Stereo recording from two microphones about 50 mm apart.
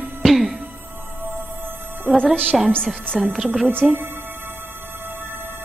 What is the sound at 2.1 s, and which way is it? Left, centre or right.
Speech, centre.